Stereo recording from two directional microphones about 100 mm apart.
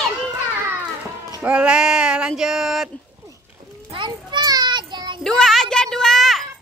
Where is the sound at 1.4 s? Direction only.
10° right (ahead or behind).